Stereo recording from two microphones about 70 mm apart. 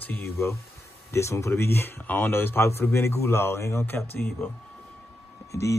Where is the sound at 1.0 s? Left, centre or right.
Left.